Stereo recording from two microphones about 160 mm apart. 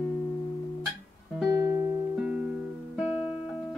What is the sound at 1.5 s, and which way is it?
Music, 20° right (ahead or behind).